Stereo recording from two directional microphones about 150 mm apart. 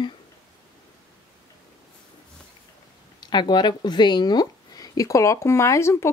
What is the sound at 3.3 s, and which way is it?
Speech, 30° left (ahead or behind).